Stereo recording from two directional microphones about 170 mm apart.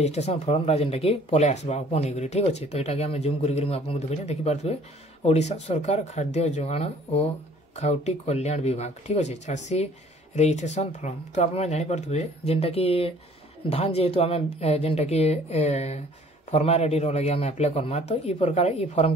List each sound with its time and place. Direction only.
0.0 s speech: 40° left (ahead or behind)